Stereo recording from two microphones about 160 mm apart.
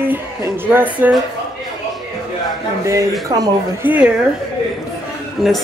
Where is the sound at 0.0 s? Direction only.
15° right (ahead or behind).